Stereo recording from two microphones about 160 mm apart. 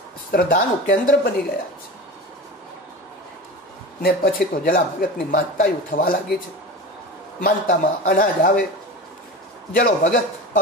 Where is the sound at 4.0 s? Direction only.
65° left (ahead or behind).